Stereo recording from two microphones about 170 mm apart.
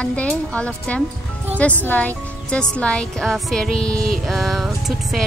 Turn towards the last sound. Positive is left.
turn(degrees=0)  # may be behind; listen again after turning